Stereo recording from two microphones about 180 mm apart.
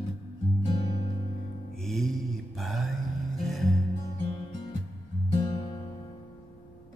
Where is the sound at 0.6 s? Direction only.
30° left (ahead or behind).